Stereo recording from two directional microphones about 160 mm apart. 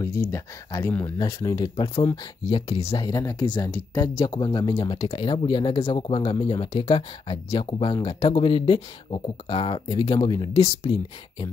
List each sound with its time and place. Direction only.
0.3 s speech: 20° left (ahead or behind); by 3.1 s 35° left (ahead or behind)
3.1 s speech: 25° left (ahead or behind)